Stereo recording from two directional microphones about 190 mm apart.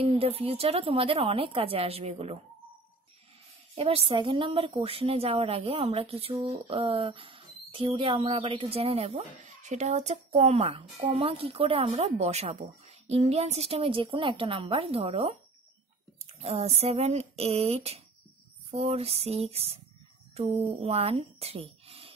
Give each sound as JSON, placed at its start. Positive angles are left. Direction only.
{"t": 0.0, "sound": "a woman's voice", "side_deg": -30}
{"t": 3.7, "sound": "a woman's voice", "side_deg": -30}
{"t": 16.3, "sound": "a woman's voice", "side_deg": -30}